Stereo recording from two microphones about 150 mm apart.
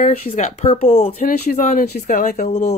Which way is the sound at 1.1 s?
60° left (ahead or behind).